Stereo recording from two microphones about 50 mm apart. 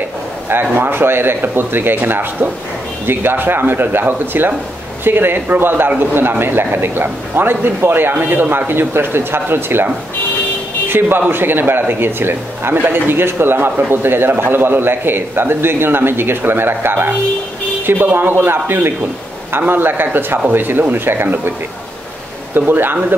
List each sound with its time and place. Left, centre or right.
0.5 s a man's voice: right
10.9 s a man's voice: right